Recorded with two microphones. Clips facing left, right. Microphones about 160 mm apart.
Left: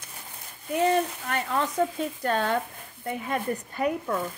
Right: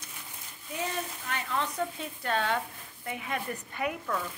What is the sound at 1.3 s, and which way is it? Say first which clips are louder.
Speech: left 5 dB; 45° left (ahead or behind).